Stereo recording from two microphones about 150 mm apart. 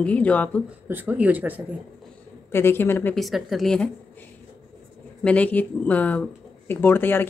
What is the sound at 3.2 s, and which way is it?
Speech, centre (ahead or behind).